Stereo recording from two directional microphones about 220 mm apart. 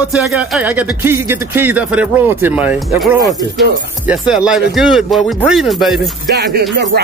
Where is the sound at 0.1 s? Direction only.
5° right (ahead or behind).